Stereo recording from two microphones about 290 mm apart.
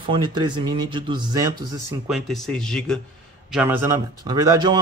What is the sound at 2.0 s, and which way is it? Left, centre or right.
A man's voice, centre.